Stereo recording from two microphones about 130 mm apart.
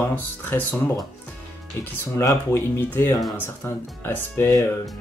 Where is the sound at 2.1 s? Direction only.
20° left (ahead or behind).